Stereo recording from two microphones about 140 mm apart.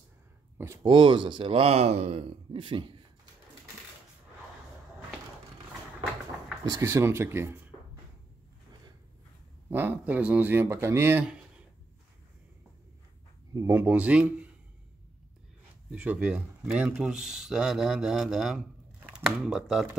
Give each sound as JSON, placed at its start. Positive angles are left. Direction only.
{"t": 0.8, "sound": "speech", "side_deg": -35}
{"t": 6.6, "sound": "speech", "side_deg": -25}
{"t": 9.7, "sound": "speech", "side_deg": -15}
{"t": 13.5, "sound": "speech", "side_deg": -20}
{"t": 15.9, "sound": "speech", "side_deg": -10}
{"t": 18.9, "sound": "a sound", "side_deg": -10}
{"t": 19.2, "sound": "speech", "side_deg": -5}